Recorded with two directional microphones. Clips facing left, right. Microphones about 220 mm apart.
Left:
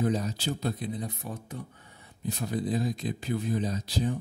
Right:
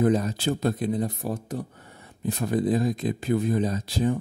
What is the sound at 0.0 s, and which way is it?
Speech, 50° right (ahead or behind).